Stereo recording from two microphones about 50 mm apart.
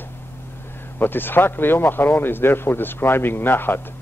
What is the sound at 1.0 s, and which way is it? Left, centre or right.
Speech, left.